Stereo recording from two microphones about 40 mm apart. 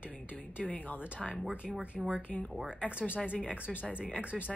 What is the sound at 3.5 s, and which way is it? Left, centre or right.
Speech, left.